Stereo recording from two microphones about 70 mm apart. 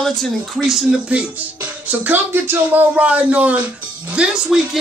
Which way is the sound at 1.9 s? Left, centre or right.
Right.